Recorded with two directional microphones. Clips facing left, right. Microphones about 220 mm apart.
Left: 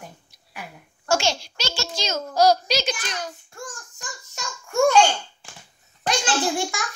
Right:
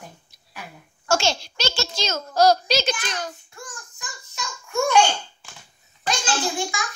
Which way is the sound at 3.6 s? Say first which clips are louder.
Left 3 dB; 45° left (ahead or behind).